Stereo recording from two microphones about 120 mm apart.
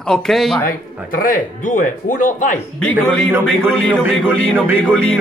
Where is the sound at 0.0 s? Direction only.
5° left (ahead or behind).